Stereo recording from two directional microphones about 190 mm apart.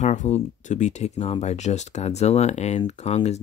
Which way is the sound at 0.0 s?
40° left (ahead or behind).